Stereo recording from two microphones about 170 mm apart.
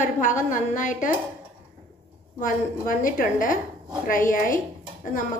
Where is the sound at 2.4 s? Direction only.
50° left (ahead or behind).